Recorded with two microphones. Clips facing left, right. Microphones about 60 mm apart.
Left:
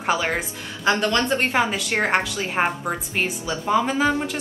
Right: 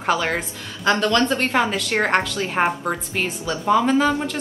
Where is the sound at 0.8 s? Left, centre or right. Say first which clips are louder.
Right 2 dB; left.